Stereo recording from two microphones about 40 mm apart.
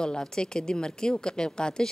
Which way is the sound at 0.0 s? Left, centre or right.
Centre.